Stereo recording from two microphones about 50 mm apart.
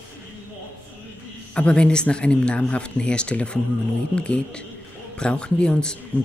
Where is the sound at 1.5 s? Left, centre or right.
Centre.